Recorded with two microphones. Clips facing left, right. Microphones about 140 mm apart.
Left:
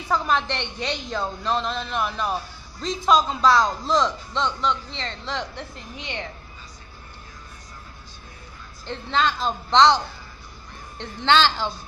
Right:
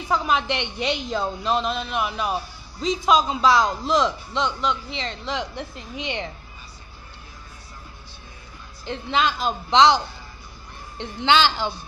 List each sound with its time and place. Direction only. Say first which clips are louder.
0.1 s a man's voice: right 1 dB; 5° right (ahead or behind)
5.9 s a woman's voice: right 4 dB; 20° right (ahead or behind)
8.8 s a man's voice: right 1 dB; 10° right (ahead or behind)